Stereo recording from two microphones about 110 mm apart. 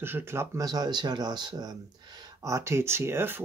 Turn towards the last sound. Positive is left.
turn(degrees=-20)  # may be behind; listen again after turning